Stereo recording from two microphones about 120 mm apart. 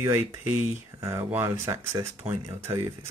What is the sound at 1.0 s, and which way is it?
Speech, 25° right (ahead or behind).